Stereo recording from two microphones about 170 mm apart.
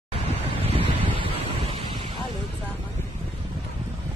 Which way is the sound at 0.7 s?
30° right (ahead or behind).